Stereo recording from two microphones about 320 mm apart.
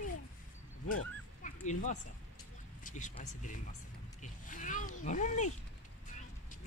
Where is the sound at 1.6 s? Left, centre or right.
Left.